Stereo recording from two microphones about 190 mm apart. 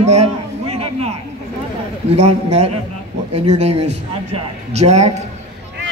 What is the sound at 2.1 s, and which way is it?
A man's voice, 35° right (ahead or behind).